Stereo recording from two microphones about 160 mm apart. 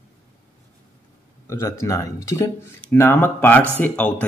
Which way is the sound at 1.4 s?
15° left (ahead or behind).